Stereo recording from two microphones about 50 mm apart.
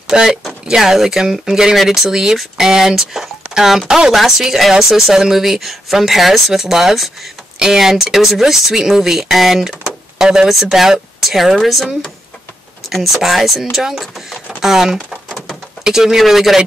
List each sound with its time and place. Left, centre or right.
0.1 s speech: centre